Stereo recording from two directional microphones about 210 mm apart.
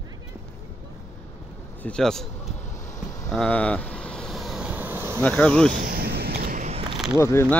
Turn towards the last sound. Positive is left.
turn(degrees=10)  # may be behind; listen again after turning